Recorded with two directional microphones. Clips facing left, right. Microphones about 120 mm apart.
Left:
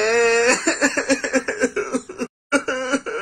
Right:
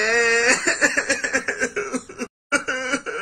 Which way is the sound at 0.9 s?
20° left (ahead or behind).